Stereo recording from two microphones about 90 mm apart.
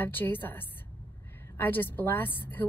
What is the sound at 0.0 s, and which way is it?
Speech, 20° left (ahead or behind).